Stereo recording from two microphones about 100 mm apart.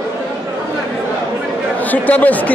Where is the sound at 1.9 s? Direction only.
15° left (ahead or behind).